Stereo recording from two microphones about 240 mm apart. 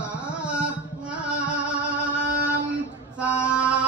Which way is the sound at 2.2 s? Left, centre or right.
Right.